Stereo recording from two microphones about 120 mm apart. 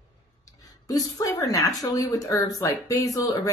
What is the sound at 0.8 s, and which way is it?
Speech, 30° left (ahead or behind).